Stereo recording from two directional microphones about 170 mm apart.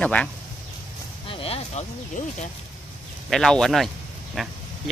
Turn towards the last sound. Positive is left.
turn(degrees=0)  # may be behind; listen again after turning